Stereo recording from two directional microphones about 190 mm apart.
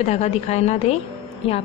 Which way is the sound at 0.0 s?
35° left (ahead or behind).